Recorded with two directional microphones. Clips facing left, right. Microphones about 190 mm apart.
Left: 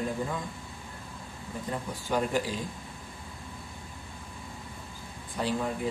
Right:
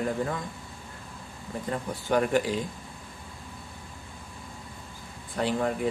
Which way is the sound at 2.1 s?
65° right (ahead or behind).